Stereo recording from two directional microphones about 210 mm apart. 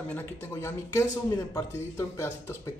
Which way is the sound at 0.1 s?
10° left (ahead or behind).